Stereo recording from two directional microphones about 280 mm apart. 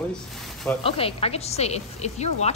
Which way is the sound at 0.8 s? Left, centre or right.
Left.